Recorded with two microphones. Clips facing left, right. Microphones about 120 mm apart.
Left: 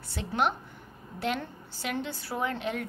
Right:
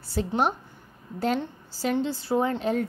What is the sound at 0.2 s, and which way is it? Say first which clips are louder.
Speech: right 10 dB; 40° right (ahead or behind).